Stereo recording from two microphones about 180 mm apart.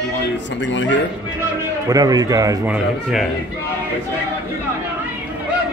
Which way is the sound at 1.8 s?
20° right (ahead or behind).